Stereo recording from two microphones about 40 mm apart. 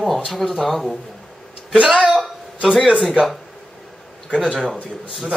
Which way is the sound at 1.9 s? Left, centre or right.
Centre.